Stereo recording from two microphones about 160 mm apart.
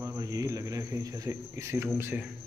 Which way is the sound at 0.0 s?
20° right (ahead or behind).